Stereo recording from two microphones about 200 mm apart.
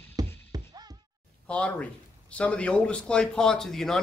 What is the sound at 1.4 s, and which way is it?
A man's voice, 5° left (ahead or behind).